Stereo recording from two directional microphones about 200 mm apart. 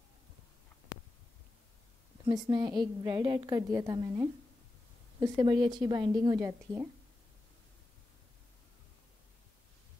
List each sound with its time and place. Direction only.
2.2 s a woman's voice: 20° right (ahead or behind)